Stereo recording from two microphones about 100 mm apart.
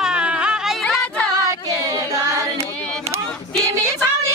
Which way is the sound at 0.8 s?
5° left (ahead or behind).